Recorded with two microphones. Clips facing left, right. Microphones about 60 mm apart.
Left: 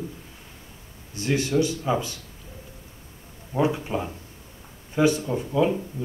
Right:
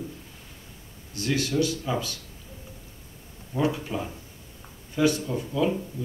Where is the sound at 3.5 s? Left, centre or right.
Left.